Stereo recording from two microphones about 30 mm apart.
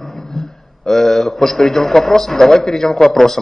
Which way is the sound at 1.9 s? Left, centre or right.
Centre.